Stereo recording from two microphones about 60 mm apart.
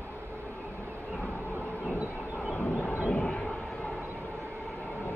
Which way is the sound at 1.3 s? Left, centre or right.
Centre.